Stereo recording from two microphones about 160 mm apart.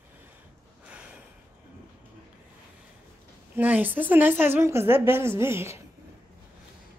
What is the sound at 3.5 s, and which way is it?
A woman's voice, 10° right (ahead or behind).